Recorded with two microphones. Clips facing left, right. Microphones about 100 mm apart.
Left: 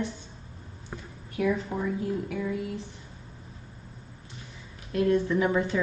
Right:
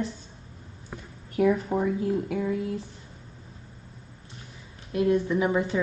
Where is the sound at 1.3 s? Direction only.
45° right (ahead or behind).